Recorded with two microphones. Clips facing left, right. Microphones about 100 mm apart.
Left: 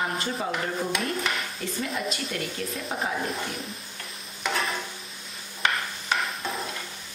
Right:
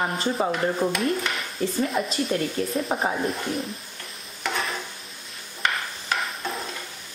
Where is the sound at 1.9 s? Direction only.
35° right (ahead or behind).